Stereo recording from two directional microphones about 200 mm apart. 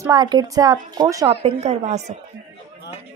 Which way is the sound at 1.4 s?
30° right (ahead or behind).